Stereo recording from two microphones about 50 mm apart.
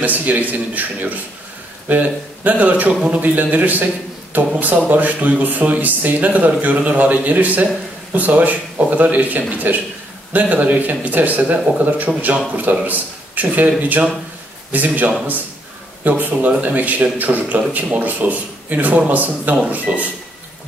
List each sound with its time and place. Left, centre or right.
0.0 s a man's voice: right